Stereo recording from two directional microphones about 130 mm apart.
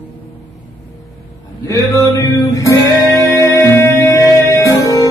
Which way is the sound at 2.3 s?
25° left (ahead or behind).